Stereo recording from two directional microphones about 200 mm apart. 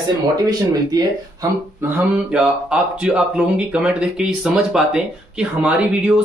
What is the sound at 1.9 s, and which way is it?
Speech, 5° right (ahead or behind).